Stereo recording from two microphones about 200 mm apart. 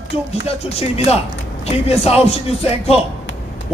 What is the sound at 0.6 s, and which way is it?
A man's voice, 30° left (ahead or behind).